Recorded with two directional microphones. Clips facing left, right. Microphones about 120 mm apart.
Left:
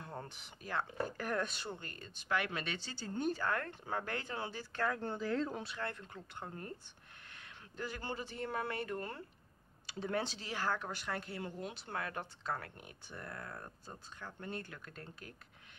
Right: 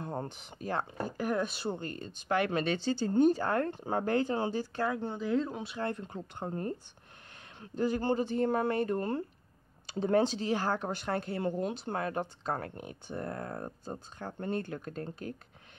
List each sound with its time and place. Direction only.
0.0 s speech: 30° right (ahead or behind)
1.1 s speech: 15° right (ahead or behind)
1.6 s speech: 30° right (ahead or behind)
4.7 s speech: 15° right (ahead or behind)
5.7 s speech: 25° right (ahead or behind)
10.2 s speech: 25° right (ahead or behind)
11.3 s speech: 45° right (ahead or behind)
11.8 s speech: 30° right (ahead or behind)